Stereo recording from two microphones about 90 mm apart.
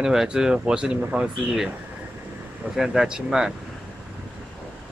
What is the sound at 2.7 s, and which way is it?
Speech, 5° right (ahead or behind).